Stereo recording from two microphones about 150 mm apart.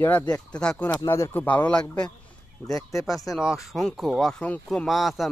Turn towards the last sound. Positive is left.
turn(degrees=0)  # may be behind; listen again after turning